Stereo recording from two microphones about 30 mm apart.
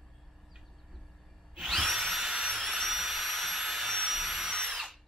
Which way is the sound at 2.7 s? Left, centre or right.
Centre.